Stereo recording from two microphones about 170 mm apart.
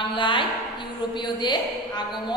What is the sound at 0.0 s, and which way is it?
A woman's voice, 30° left (ahead or behind).